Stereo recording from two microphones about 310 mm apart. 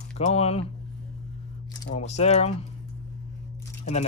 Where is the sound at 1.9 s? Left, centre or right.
Left.